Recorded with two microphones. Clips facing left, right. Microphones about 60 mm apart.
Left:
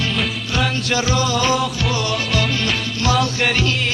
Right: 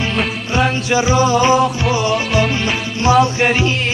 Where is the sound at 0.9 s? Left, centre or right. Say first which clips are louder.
Right 7 dB; right.